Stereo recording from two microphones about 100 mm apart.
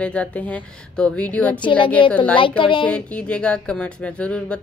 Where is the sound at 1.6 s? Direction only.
55° left (ahead or behind).